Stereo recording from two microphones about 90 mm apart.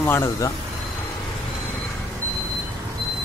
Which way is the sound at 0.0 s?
30° left (ahead or behind).